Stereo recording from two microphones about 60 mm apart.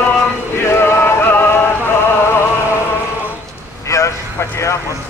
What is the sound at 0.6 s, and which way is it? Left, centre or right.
Music, left.